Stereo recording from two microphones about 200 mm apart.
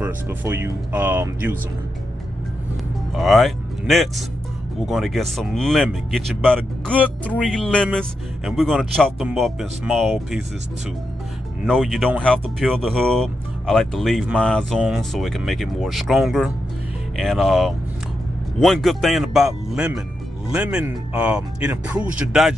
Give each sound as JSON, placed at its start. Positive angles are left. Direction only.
{"t": 0.0, "sound": "speech", "side_deg": -10}
{"t": 3.2, "sound": "speech", "side_deg": 0}
{"t": 11.6, "sound": "speech", "side_deg": 0}